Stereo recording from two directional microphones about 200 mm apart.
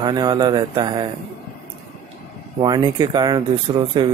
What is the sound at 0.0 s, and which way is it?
Speech, 20° right (ahead or behind).